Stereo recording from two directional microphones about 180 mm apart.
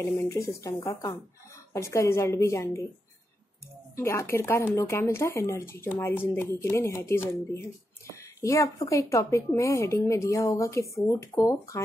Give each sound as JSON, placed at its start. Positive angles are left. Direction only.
{"t": 0.3, "sound": "a woman's voice", "side_deg": 15}
{"t": 3.9, "sound": "a woman's voice", "side_deg": 15}